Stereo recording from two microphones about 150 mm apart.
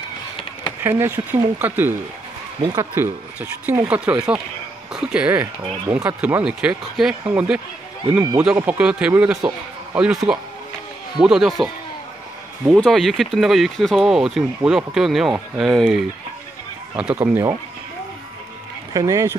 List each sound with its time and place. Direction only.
0.7 s speech: 15° right (ahead or behind)
18.9 s speech: 20° right (ahead or behind)